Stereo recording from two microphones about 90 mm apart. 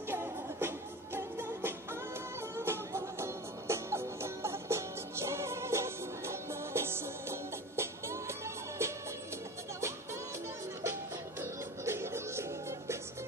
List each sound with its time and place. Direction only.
0.1 s music: 25° right (ahead or behind)
11.8 s music: 30° right (ahead or behind)